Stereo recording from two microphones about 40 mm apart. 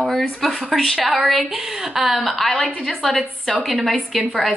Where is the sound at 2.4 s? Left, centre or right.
Centre.